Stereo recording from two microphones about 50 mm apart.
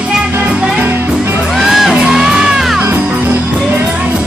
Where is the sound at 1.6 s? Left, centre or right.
Centre.